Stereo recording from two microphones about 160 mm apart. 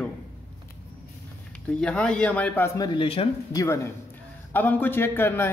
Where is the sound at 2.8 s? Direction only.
30° left (ahead or behind).